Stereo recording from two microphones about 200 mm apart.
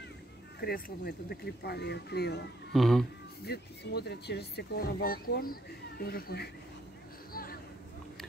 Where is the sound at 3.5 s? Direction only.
55° left (ahead or behind).